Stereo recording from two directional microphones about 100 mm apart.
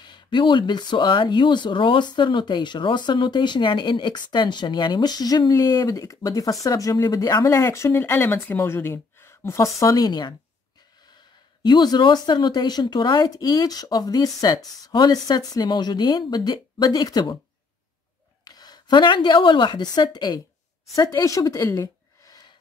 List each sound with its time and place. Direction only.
0.0 s speech: 50° left (ahead or behind)
11.6 s speech: 45° left (ahead or behind)
18.4 s speech: 45° left (ahead or behind)